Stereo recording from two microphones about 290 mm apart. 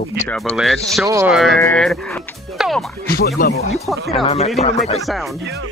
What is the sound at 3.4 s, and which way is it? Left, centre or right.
Speech, left.